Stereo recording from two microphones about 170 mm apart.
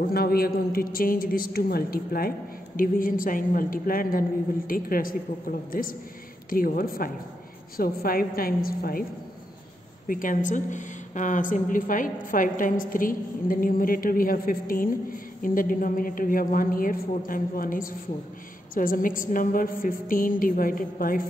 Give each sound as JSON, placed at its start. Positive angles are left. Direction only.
{"t": 0.0, "sound": "a woman's voice", "side_deg": 65}
{"t": 10.0, "sound": "a woman's voice", "side_deg": 55}